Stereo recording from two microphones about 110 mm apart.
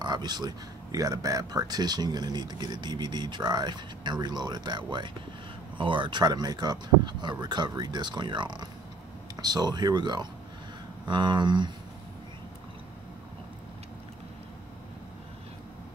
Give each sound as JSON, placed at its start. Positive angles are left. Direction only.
{"t": 0.0, "sound": "speech", "side_deg": -40}